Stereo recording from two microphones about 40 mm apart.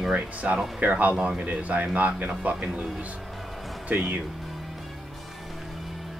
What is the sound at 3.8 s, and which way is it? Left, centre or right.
Speech, right.